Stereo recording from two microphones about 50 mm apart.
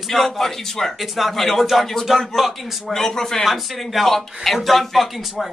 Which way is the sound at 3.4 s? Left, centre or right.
Centre.